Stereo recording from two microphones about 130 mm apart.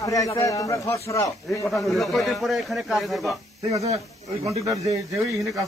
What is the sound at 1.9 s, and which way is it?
Speech, centre (ahead or behind).